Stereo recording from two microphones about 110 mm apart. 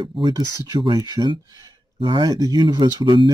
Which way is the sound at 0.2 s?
40° right (ahead or behind).